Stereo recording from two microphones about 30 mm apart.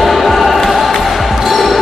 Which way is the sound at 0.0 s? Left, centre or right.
Centre.